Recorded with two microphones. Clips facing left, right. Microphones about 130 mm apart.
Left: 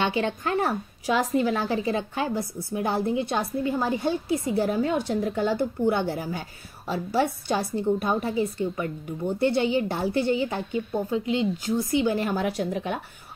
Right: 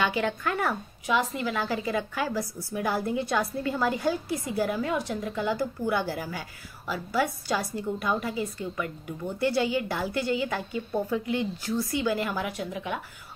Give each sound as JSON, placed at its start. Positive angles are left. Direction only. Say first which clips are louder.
{"t": 0.0, "sound": "speech", "louder": "left 2 dB", "side_deg": 25}